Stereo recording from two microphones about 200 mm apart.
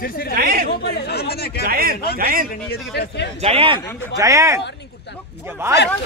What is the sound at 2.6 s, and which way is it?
Speech, 55° left (ahead or behind).